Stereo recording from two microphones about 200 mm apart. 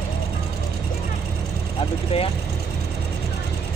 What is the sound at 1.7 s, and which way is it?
Vehicle, 30° left (ahead or behind).